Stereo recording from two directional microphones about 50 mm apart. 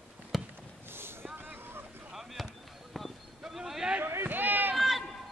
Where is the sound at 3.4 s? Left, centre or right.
Centre.